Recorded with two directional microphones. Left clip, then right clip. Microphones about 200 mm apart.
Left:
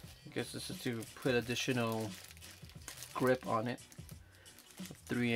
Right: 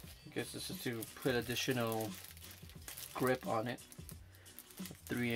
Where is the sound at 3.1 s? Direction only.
30° left (ahead or behind).